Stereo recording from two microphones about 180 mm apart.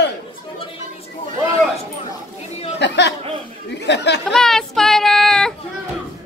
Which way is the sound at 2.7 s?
75° left (ahead or behind).